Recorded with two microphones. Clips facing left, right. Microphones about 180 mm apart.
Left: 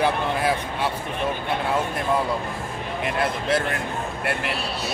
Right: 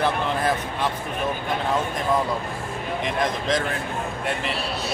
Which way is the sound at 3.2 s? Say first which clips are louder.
Left 1 dB; 10° left (ahead or behind).